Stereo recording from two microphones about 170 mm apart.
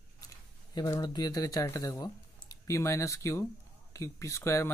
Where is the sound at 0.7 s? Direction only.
25° left (ahead or behind).